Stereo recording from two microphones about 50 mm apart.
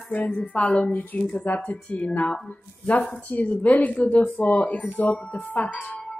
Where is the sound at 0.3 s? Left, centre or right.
Left.